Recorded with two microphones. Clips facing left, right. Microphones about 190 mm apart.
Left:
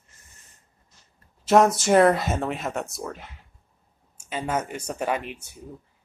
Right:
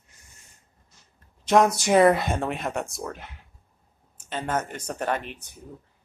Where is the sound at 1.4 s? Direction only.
5° left (ahead or behind).